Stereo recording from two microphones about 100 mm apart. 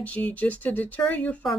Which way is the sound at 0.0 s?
15° left (ahead or behind).